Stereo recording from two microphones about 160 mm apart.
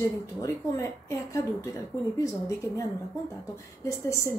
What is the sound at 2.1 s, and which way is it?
Speech, 20° left (ahead or behind).